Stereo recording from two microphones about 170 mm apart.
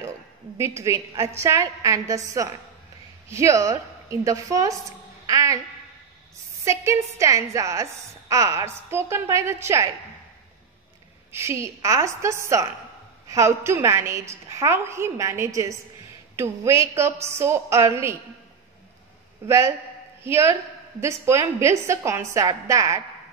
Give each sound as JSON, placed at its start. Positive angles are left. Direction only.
{"t": 0.6, "sound": "a woman's voice", "side_deg": -15}
{"t": 5.2, "sound": "a sound", "side_deg": -20}
{"t": 6.6, "sound": "a woman's voice", "side_deg": -15}
{"t": 11.3, "sound": "a woman's voice", "side_deg": -15}
{"t": 19.4, "sound": "a woman's voice", "side_deg": -15}